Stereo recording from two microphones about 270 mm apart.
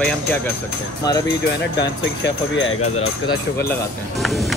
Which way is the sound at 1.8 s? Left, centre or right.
Left.